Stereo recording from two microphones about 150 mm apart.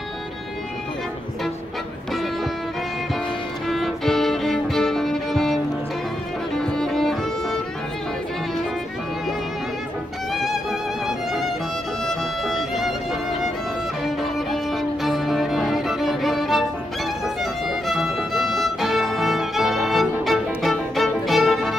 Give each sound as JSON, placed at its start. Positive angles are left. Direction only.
{"t": 3.6, "sound": "violin", "side_deg": 0}
{"t": 6.5, "sound": "music", "side_deg": 5}
{"t": 10.3, "sound": "music", "side_deg": 0}
{"t": 14.0, "sound": "music", "side_deg": 0}
{"t": 17.4, "sound": "violin", "side_deg": 0}